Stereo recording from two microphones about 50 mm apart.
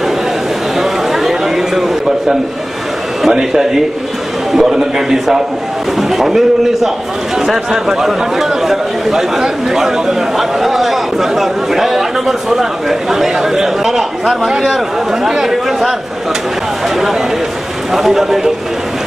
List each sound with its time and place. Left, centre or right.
0.7 s a sound: centre
3.2 s speech: centre
16.9 s a man's voice: centre